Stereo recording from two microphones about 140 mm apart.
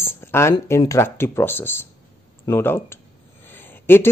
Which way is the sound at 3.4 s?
15° left (ahead or behind).